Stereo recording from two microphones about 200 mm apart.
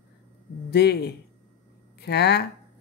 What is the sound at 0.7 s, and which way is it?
Speech, 55° left (ahead or behind).